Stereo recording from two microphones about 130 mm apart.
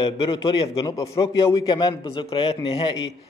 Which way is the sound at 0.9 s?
25° left (ahead or behind).